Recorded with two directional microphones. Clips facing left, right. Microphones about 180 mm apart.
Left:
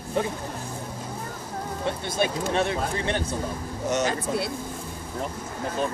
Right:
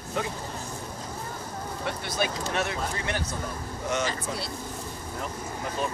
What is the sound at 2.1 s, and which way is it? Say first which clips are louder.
Speech: left 4 dB; 25° left (ahead or behind).